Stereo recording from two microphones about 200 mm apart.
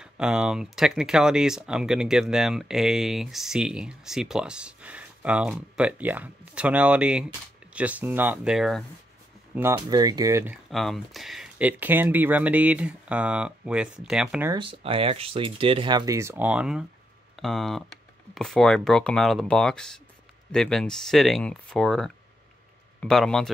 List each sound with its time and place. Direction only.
0.0 s speech: 5° right (ahead or behind)
9.6 s speech: 15° right (ahead or behind)
10.7 s speech: centre (ahead or behind)
14.5 s speech: 25° right (ahead or behind); by 23.5 s centre (ahead or behind)